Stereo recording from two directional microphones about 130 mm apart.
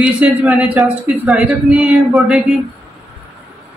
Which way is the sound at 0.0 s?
10° right (ahead or behind).